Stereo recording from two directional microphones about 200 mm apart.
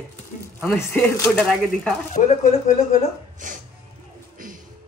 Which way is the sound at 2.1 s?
35° left (ahead or behind).